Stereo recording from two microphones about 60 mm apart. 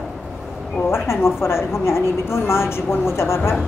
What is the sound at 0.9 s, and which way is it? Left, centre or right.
A woman's voice, left.